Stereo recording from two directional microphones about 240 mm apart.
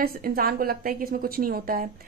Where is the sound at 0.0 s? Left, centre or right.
Right.